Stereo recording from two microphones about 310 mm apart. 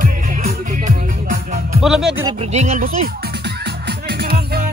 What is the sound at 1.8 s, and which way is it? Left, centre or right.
Speech, centre.